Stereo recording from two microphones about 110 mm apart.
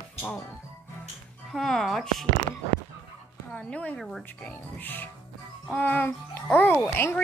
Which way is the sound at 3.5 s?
10° left (ahead or behind).